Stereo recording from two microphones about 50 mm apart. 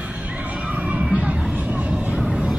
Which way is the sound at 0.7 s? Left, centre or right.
Right.